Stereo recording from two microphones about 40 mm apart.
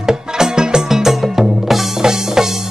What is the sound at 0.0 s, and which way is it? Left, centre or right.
Music, centre.